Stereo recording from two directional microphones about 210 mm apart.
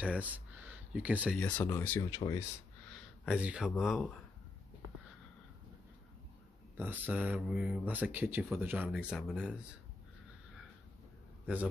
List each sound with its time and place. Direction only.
0.0 s speech: 5° right (ahead or behind)
1.4 s speech: 10° left (ahead or behind)
3.3 s speech: 5° right (ahead or behind)
6.8 s speech: 10° right (ahead or behind)